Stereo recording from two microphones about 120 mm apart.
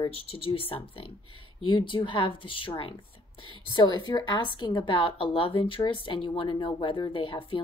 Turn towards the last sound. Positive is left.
turn(degrees=45)  # may be behind; listen again after turning